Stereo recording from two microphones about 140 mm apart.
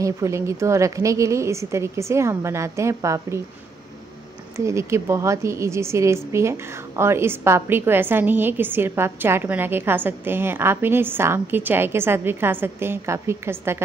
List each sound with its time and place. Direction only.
0.0 s a woman's voice: 20° right (ahead or behind)
4.6 s a woman's voice: 20° right (ahead or behind)